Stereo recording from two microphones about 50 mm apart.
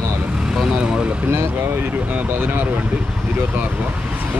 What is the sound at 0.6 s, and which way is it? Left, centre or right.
Speech, centre.